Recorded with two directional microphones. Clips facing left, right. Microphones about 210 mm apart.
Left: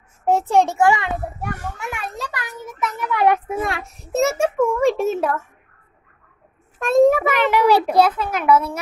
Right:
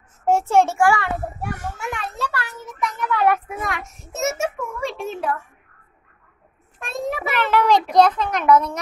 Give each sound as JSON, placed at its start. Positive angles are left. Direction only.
{"t": 0.2, "sound": "a child's voice", "side_deg": 15}
{"t": 1.8, "sound": "a child's voice", "side_deg": 10}
{"t": 3.4, "sound": "a child's voice", "side_deg": 30}
{"t": 4.6, "sound": "a child's voice", "side_deg": 45}
{"t": 6.8, "sound": "a child's voice", "side_deg": 45}
{"t": 7.3, "sound": "a child's voice", "side_deg": 15}